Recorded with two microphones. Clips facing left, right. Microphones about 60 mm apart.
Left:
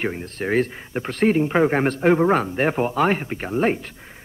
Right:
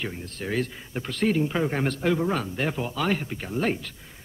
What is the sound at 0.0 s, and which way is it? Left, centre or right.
A man's voice, left.